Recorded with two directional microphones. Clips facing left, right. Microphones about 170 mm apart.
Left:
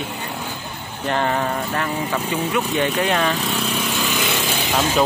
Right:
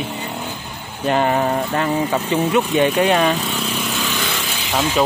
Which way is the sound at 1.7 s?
25° right (ahead or behind).